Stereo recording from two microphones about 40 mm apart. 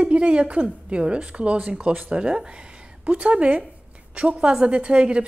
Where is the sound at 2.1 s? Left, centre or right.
Right.